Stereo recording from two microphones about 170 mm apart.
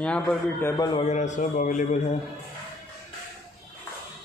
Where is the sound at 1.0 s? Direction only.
45° left (ahead or behind).